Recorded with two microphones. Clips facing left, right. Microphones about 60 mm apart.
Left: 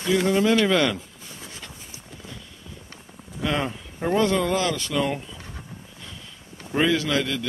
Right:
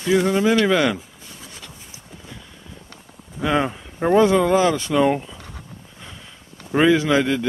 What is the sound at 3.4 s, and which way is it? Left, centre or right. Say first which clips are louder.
Speech: right 5 dB; centre.